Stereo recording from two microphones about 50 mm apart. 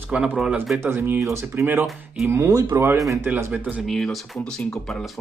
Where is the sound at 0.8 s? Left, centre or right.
Right.